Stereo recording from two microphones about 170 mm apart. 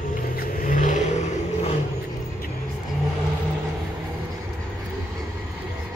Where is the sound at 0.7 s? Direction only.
50° left (ahead or behind).